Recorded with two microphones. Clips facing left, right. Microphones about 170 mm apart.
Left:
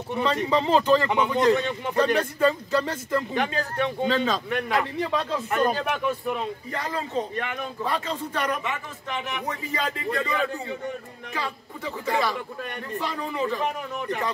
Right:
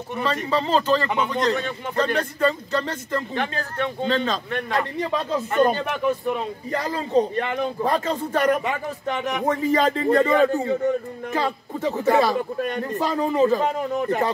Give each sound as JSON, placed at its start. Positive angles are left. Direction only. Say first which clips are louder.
{"t": 0.1, "sound": "speech", "louder": "left 1 dB", "side_deg": 15}
{"t": 6.7, "sound": "a man's voice", "louder": "right 9 dB", "side_deg": -35}